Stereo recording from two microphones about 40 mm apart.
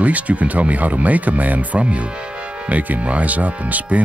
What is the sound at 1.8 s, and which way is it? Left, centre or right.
Speech, right.